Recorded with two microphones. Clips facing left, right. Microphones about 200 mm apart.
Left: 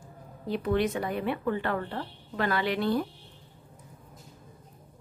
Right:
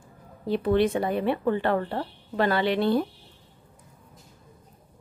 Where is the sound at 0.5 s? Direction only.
30° right (ahead or behind).